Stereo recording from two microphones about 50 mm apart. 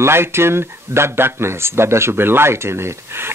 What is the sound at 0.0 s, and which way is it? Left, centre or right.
Speech, right.